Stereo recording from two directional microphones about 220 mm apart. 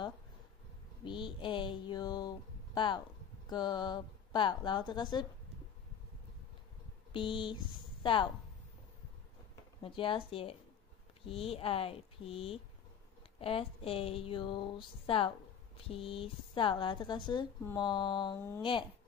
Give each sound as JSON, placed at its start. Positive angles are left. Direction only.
{"t": 1.0, "sound": "speech", "side_deg": 20}
{"t": 7.1, "sound": "speech", "side_deg": 25}
{"t": 9.8, "sound": "speech", "side_deg": 25}